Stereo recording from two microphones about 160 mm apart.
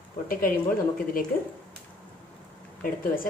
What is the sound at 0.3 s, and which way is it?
Speech, 60° left (ahead or behind).